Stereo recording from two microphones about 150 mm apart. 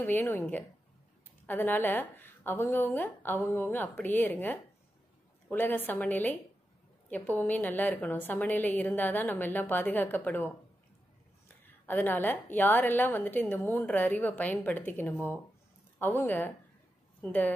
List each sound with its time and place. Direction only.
0.0 s a woman's voice: 15° left (ahead or behind)